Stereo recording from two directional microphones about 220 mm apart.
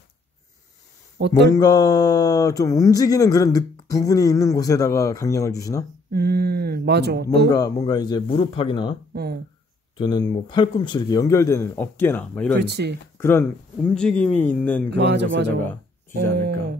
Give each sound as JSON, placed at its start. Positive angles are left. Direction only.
{"t": 1.2, "sound": "speech", "side_deg": -50}
{"t": 1.5, "sound": "speech", "side_deg": 15}
{"t": 6.1, "sound": "speech", "side_deg": -45}
{"t": 7.4, "sound": "speech", "side_deg": 15}
{"t": 9.1, "sound": "speech", "side_deg": -45}
{"t": 9.9, "sound": "speech", "side_deg": 20}
{"t": 12.6, "sound": "speech", "side_deg": -50}
{"t": 13.2, "sound": "speech", "side_deg": 10}
{"t": 15.0, "sound": "speech", "side_deg": -50}